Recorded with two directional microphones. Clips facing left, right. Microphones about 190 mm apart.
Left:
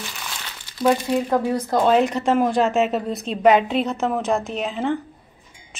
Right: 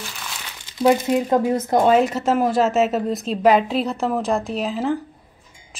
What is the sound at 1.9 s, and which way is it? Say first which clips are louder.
A woman's voice: left 1 dB; 5° right (ahead or behind).